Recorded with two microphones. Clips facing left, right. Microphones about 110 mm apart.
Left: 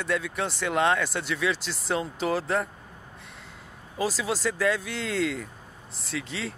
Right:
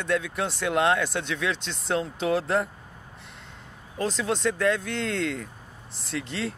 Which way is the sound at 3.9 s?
5° left (ahead or behind).